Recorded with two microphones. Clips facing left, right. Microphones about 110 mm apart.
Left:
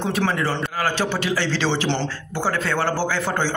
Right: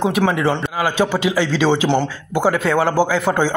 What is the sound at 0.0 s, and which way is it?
A man's voice, 15° right (ahead or behind).